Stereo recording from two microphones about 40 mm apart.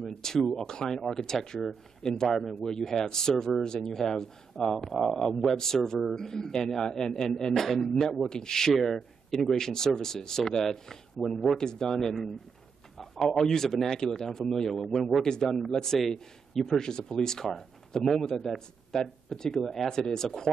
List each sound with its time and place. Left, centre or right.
0.0 s speech: centre
2.5 s speech: centre
15.2 s speech: centre